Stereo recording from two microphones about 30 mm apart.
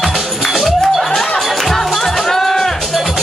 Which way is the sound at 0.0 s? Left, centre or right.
Centre.